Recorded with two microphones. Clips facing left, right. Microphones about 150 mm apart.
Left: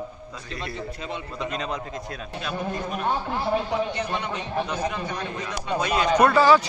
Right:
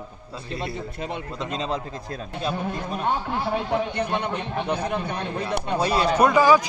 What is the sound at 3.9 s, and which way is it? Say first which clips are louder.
A man's voice: right 3 dB; 55° right (ahead or behind).